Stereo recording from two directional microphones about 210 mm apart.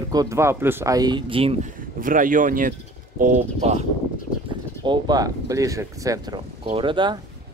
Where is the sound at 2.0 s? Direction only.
40° right (ahead or behind).